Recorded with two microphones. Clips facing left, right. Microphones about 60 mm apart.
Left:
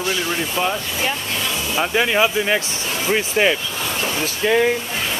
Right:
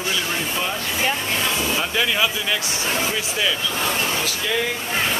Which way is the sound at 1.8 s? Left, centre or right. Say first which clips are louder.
Left 7 dB; left.